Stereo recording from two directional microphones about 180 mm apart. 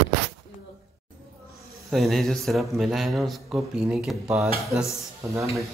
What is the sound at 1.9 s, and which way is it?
Speech, centre (ahead or behind).